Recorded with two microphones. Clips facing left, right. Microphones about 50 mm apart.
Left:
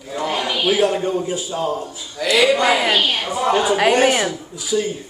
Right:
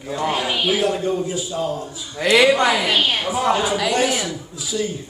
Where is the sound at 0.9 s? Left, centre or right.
Left.